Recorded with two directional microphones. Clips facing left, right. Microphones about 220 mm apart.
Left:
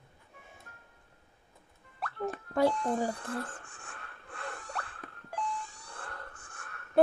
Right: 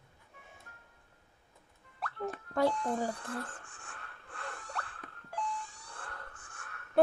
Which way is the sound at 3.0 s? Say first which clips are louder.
Left 3 dB; 35° left (ahead or behind).